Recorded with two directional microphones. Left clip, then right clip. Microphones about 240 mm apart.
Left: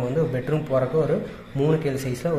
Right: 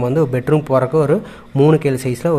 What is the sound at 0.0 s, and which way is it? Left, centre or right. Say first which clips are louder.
A man's voice: right 7 dB; right.